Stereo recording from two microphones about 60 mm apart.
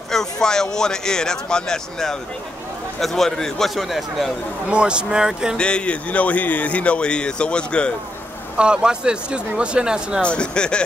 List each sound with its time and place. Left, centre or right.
0.1 s a man's voice: centre
4.6 s speech: centre
5.6 s speech: centre
8.5 s speech: centre
10.2 s speech: centre